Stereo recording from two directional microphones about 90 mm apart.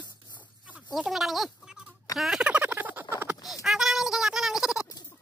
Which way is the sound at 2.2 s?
10° right (ahead or behind).